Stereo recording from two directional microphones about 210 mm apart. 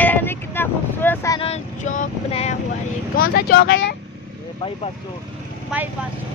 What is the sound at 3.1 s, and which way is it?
Speech, 45° left (ahead or behind).